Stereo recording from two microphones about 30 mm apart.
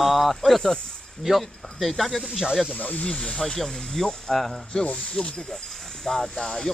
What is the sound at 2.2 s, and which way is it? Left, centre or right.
Speech, centre.